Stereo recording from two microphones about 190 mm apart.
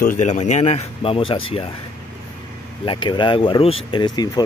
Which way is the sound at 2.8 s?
25° left (ahead or behind).